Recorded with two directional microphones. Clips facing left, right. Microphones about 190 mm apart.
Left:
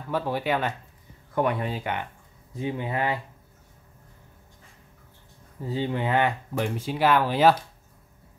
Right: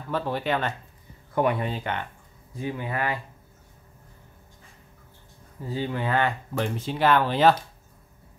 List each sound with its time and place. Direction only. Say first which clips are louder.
0.1 s speech: even; 10° left (ahead or behind)
1.3 s speech: right 1 dB; 5° right (ahead or behind)
2.5 s speech: left 1 dB; 20° left (ahead or behind)
5.7 s speech: left 1 dB; 20° left (ahead or behind)